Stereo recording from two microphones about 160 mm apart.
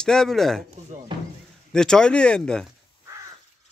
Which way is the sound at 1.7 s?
5° left (ahead or behind).